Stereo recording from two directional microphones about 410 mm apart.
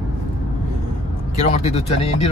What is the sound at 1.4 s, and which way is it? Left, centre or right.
Speech, centre.